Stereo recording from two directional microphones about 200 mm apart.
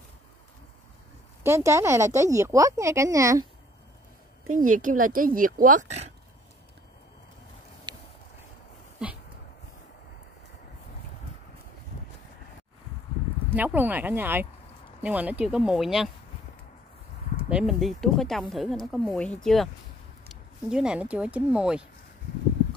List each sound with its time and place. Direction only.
1.4 s speech: 15° right (ahead or behind)
4.6 s a woman's voice: 40° right (ahead or behind)
7.9 s a sound: 20° right (ahead or behind)
13.6 s speech: 10° right (ahead or behind)
17.5 s speech: 5° right (ahead or behind)